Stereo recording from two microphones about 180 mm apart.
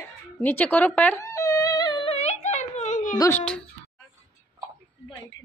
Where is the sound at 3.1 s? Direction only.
20° left (ahead or behind).